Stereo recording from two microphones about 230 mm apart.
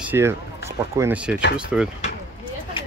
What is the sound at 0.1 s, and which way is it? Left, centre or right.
Speech, centre.